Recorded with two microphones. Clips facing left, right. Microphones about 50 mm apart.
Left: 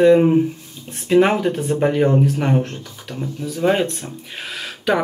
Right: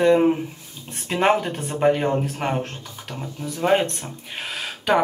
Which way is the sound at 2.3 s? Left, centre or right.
Centre.